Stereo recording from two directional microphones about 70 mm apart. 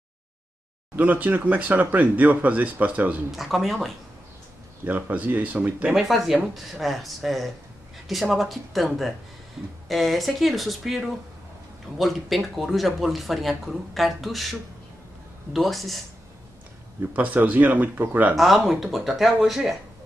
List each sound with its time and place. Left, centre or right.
0.9 s speech: right
3.3 s speech: centre
4.8 s speech: right
5.9 s speech: centre
17.1 s speech: right
18.3 s speech: centre